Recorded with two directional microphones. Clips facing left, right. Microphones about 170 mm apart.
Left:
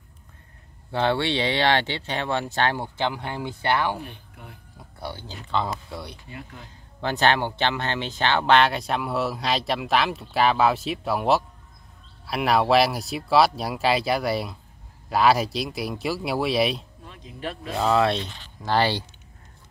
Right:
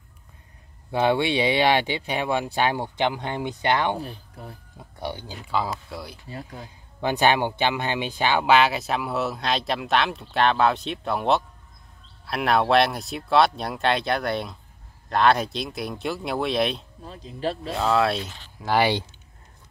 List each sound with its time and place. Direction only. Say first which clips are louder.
0.9 s speech: right 2 dB; 15° right (ahead or behind)
4.0 s speech: right 4 dB; 35° right (ahead or behind)
4.7 s speech: right 3 dB; 20° right (ahead or behind); by 6.1 s centre (ahead or behind)
6.2 s speech: right 3 dB; 35° right (ahead or behind)
7.0 s speech: right 1 dB; 15° right (ahead or behind); by 16.8 s 5° left (ahead or behind)
17.0 s speech: right 5 dB; 35° right (ahead or behind)
17.7 s speech: left 2 dB; centre (ahead or behind)